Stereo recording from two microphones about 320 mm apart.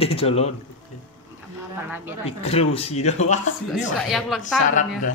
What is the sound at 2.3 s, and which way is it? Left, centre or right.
Speech, centre.